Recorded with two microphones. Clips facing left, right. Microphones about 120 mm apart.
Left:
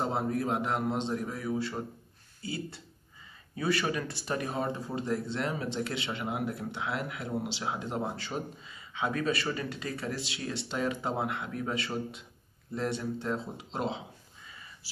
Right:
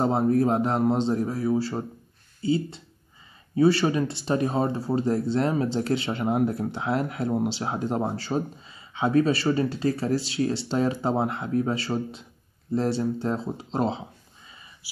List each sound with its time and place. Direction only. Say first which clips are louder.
0.0 s speech: right 9 dB; 35° right (ahead or behind)